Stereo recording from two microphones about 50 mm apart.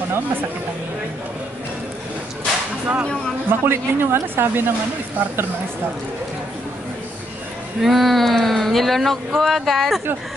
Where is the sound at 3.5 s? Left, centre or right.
Right.